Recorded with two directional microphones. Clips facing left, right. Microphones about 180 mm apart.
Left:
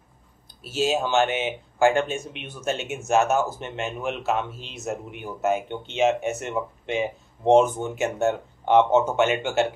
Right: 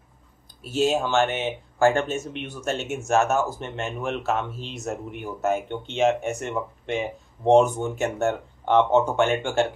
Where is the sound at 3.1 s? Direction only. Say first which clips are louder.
Left 1 dB; 20° left (ahead or behind).